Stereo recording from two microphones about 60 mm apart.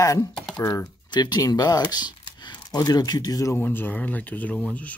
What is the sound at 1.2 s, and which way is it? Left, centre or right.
Speech, left.